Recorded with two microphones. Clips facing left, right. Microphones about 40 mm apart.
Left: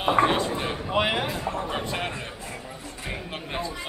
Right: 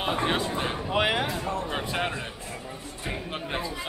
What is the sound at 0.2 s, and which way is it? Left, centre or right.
Speech, centre.